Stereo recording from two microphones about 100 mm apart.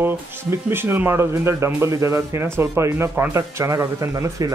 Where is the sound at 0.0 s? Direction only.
25° right (ahead or behind).